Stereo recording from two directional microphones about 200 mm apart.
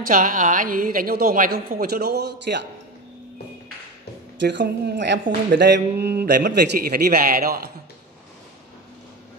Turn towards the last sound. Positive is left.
turn(degrees=-50)  # may be behind; listen again after turning